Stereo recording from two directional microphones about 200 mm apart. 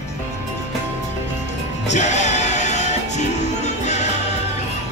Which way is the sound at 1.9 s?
35° left (ahead or behind).